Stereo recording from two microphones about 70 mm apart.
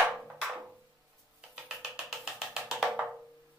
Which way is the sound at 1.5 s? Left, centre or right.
Centre.